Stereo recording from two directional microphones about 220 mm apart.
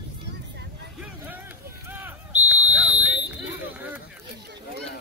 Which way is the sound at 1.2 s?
10° right (ahead or behind).